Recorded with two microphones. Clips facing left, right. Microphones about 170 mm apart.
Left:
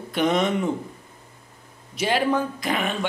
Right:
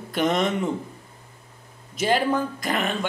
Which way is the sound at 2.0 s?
Centre (ahead or behind).